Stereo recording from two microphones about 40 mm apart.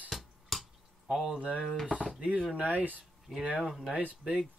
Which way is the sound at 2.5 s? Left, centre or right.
Right.